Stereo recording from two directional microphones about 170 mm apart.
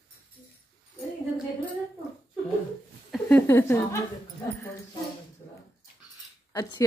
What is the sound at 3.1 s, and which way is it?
Speech, 10° left (ahead or behind).